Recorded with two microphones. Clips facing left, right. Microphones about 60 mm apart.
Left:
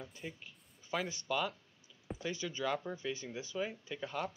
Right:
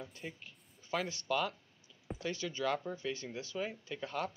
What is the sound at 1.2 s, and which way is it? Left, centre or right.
Speech, centre.